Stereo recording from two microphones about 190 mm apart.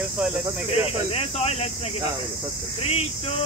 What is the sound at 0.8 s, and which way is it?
Speech, 30° left (ahead or behind).